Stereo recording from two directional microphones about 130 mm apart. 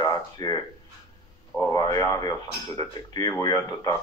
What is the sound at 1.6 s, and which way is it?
A man's voice, 30° left (ahead or behind).